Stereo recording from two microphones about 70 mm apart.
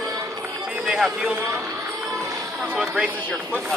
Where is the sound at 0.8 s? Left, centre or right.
Centre.